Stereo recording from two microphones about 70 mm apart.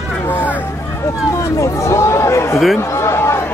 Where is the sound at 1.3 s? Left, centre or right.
Left.